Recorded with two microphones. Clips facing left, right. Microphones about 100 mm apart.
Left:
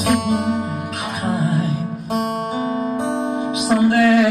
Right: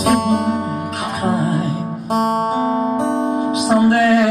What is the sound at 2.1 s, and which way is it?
Music, 35° right (ahead or behind).